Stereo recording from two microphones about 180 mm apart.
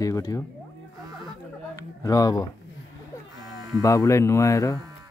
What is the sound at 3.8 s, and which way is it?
Speech, 15° left (ahead or behind).